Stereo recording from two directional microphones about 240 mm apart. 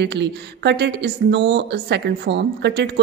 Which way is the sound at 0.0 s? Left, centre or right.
Right.